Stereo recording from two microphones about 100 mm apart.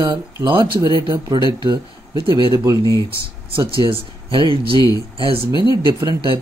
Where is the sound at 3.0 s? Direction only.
60° right (ahead or behind).